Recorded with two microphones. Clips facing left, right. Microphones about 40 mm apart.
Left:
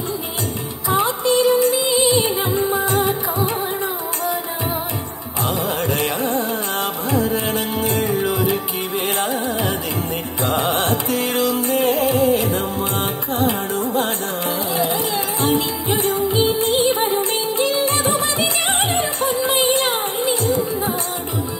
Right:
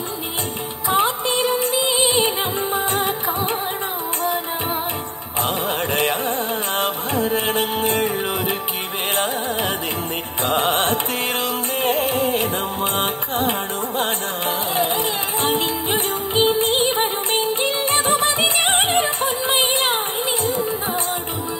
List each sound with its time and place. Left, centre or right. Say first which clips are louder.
0.8 s music: left 1 dB; right
5.9 s music: even; right
10.5 s music: right 1 dB; right
15.4 s music: left 1 dB; right